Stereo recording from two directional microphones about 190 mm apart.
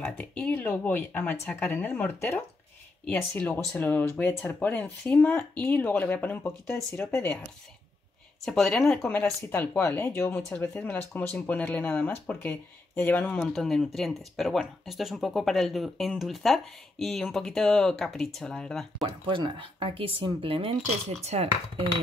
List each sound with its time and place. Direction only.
0.0 s speech: 5° left (ahead or behind)
8.5 s speech: centre (ahead or behind)
19.2 s speech: 25° right (ahead or behind)